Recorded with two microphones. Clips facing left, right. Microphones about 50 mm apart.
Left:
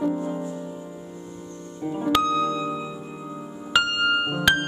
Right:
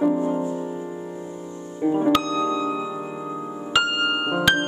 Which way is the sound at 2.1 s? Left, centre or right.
Centre.